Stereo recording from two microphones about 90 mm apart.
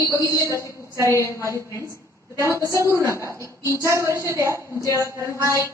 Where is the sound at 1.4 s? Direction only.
30° right (ahead or behind).